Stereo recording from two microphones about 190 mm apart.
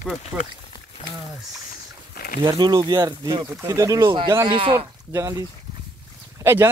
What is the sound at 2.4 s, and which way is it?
Speech, 20° right (ahead or behind).